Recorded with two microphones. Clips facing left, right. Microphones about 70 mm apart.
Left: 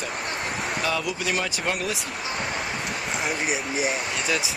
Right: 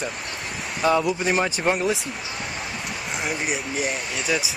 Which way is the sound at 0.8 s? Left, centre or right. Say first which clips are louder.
Right 9 dB; right.